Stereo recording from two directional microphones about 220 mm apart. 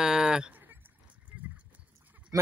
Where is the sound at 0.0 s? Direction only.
5° right (ahead or behind).